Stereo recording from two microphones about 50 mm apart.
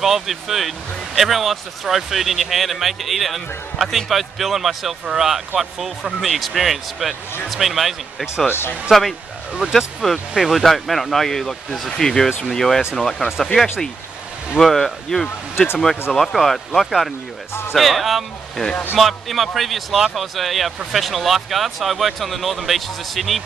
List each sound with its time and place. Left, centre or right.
0.0 s speech: centre
8.5 s speech: left
9.6 s speech: centre
14.6 s speech: centre
15.2 s speech: left
16.2 s speech: centre